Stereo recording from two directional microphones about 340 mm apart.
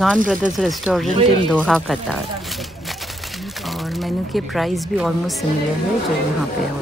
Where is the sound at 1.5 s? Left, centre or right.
Centre.